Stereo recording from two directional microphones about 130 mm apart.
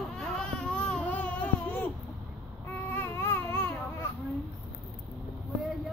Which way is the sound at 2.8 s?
15° left (ahead or behind).